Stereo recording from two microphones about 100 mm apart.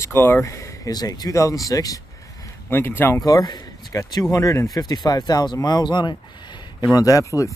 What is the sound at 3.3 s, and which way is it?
Speech, 40° left (ahead or behind).